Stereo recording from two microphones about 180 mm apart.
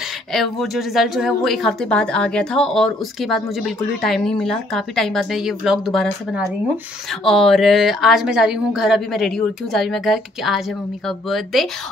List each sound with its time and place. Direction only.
0.3 s a woman's voice: centre (ahead or behind)